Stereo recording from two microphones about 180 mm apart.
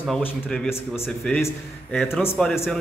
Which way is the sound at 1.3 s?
10° left (ahead or behind).